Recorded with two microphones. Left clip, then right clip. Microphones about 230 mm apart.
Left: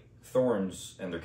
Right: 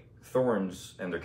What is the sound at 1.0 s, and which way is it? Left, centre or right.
Speech, centre.